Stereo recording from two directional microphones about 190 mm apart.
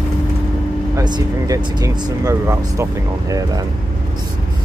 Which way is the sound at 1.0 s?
20° right (ahead or behind).